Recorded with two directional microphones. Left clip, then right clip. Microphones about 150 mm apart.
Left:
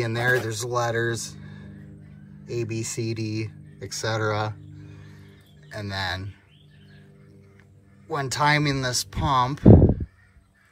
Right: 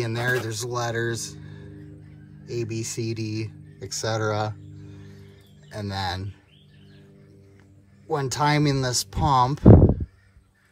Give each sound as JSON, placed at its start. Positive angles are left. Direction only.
{"t": 0.0, "sound": "speech", "side_deg": -10}
{"t": 8.1, "sound": "speech", "side_deg": -30}
{"t": 9.7, "sound": "a sound", "side_deg": 45}